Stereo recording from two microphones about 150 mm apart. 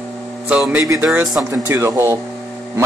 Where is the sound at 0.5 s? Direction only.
10° right (ahead or behind).